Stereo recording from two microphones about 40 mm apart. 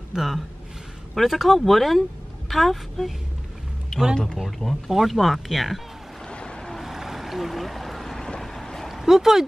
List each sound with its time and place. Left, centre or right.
0.1 s speech: centre
3.9 s a sound: left
4.4 s speech: centre
6.2 s vehicle: left
6.7 s boat: centre
8.2 s boat: centre
8.5 s a sound: centre
9.0 s speech: centre